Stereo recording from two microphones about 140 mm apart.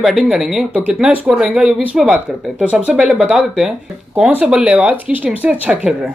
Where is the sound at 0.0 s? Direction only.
Centre (ahead or behind).